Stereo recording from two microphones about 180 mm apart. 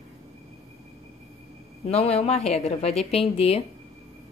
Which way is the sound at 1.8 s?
35° left (ahead or behind).